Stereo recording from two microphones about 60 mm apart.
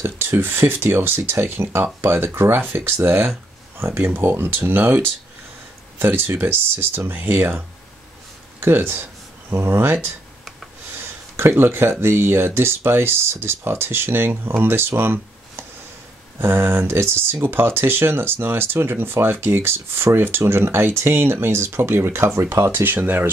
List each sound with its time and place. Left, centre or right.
0.0 s speech: right
11.3 s speech: right
22.9 s speech: right